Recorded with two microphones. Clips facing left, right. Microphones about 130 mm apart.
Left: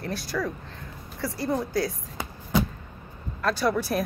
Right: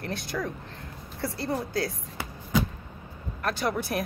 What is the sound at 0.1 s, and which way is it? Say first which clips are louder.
Speech: left 2 dB; 20° right (ahead or behind).